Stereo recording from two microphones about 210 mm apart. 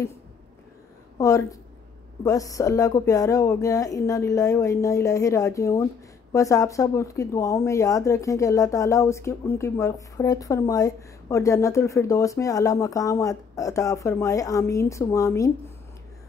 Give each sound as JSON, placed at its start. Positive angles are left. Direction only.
{"t": 1.1, "sound": "speech", "side_deg": 15}